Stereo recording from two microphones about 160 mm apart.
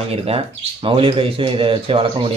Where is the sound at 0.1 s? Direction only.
35° right (ahead or behind).